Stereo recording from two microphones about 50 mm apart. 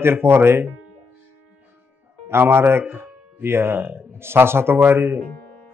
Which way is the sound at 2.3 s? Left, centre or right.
Right.